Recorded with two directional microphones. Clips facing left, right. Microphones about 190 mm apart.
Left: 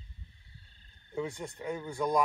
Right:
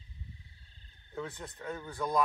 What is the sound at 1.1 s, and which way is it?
Speech, 15° left (ahead or behind).